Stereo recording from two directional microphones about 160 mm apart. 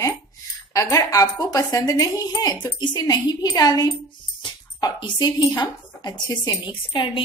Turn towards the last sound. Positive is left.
turn(degrees=30)  # may be behind; listen again after turning